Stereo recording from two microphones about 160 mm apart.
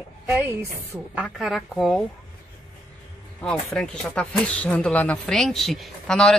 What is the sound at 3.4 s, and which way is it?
Speech, 5° left (ahead or behind).